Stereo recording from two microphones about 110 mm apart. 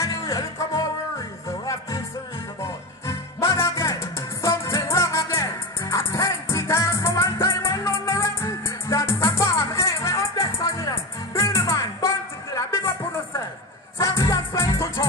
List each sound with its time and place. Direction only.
0.0 s music: 30° left (ahead or behind)